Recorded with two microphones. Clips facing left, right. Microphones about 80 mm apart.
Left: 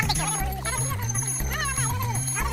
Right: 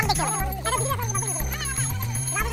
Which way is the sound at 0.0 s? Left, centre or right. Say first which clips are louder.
Right 4 dB; centre.